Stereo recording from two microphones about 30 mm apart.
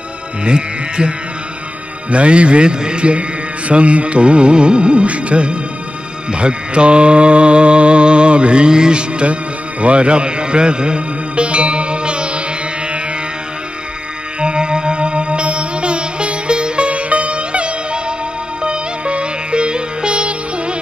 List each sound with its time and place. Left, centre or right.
0.5 s a man's voice: right
9.2 s music: right
14.4 s music: right